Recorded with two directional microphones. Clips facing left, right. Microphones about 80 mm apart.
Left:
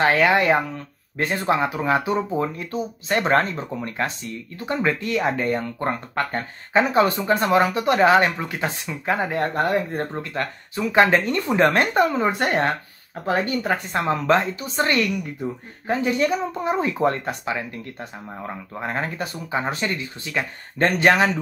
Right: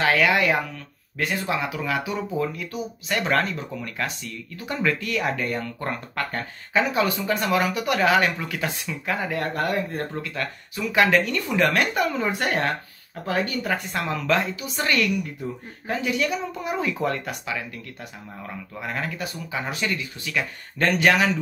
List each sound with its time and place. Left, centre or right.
0.0 s speech: left